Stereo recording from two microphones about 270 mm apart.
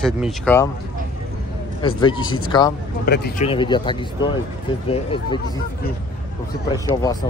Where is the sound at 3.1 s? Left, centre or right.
Left.